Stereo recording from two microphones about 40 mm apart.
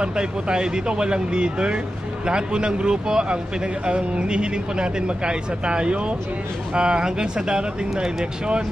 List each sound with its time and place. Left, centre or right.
0.0 s speech: right